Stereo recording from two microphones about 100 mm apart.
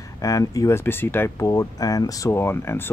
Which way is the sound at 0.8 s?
20° left (ahead or behind).